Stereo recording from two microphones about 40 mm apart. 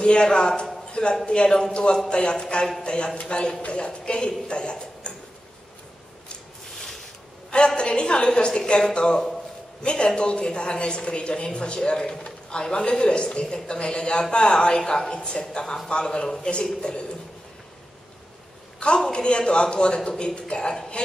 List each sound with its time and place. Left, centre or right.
0.0 s a woman's voice: left
7.5 s a woman's voice: left
18.8 s a woman's voice: left